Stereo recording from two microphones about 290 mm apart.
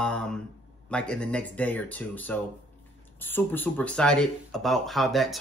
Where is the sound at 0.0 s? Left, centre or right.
Centre.